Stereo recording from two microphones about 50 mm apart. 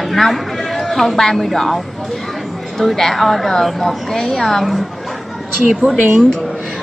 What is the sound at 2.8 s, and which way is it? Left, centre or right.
Speech, centre.